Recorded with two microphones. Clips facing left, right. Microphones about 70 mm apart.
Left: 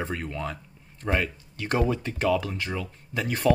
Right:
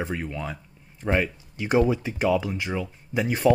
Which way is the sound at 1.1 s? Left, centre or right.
Centre.